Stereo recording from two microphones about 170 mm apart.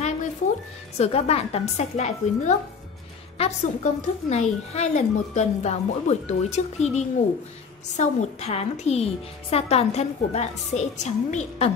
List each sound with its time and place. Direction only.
0.9 s a woman's voice: 40° left (ahead or behind)